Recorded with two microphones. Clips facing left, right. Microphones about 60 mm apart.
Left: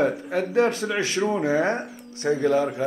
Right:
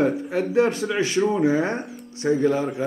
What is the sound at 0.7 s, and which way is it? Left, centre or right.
Speech, centre.